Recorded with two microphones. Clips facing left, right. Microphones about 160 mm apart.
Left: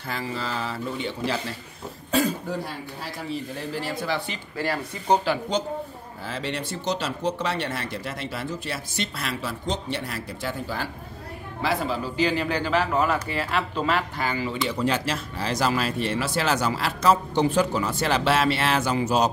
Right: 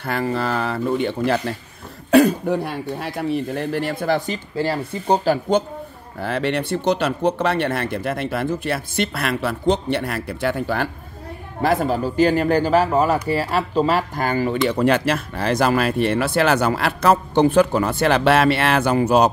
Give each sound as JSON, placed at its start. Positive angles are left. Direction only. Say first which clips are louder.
{"t": 0.0, "sound": "speech", "louder": "right 8 dB", "side_deg": -60}
{"t": 4.6, "sound": "speech", "louder": "right 5 dB", "side_deg": -30}
{"t": 6.2, "sound": "speech", "louder": "right 9 dB", "side_deg": -60}
{"t": 11.6, "sound": "speech", "louder": "right 7 dB", "side_deg": -50}